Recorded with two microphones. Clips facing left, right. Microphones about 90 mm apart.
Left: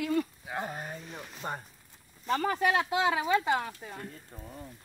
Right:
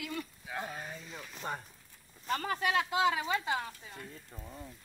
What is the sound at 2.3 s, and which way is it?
Speech, 40° left (ahead or behind).